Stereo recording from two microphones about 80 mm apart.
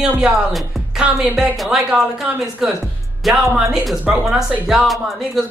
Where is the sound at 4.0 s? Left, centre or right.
Centre.